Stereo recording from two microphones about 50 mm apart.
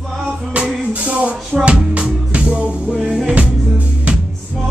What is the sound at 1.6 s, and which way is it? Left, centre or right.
Music, right.